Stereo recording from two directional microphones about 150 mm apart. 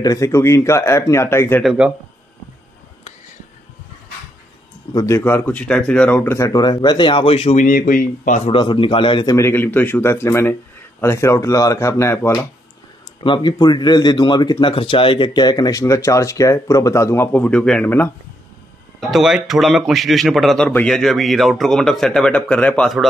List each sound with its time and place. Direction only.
0.0 s a man's voice: 20° left (ahead or behind)
1.6 s a man's voice: 5° right (ahead or behind)
4.9 s a man's voice: 20° left (ahead or behind)
6.3 s speech: 20° left (ahead or behind); by 7.6 s 40° left (ahead or behind)
7.6 s speech: 65° left (ahead or behind)
8.5 s a man's voice: 35° left (ahead or behind); by 12.4 s 15° left (ahead or behind)
13.2 s a man's voice: 30° left (ahead or behind); by 18.1 s 15° left (ahead or behind)
18.9 s a man's voice: centre (ahead or behind)